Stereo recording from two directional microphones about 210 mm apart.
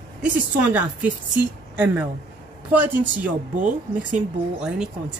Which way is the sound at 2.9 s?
40° right (ahead or behind).